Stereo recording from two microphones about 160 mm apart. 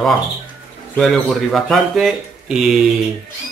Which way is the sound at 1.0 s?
Centre (ahead or behind).